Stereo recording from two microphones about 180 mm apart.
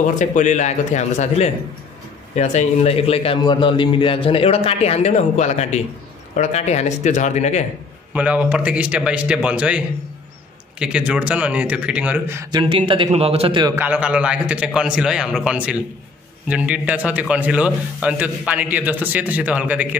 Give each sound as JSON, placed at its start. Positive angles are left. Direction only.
{"t": 0.2, "sound": "a man's voice", "side_deg": 40}
{"t": 8.1, "sound": "a man's voice", "side_deg": -10}
{"t": 12.4, "sound": "a man's voice", "side_deg": -25}
{"t": 13.7, "sound": "a man's voice", "side_deg": -10}